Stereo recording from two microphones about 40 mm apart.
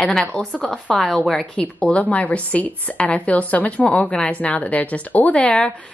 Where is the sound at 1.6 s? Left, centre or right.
Left.